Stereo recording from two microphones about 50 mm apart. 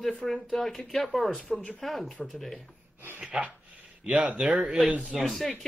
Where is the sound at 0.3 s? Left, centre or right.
Centre.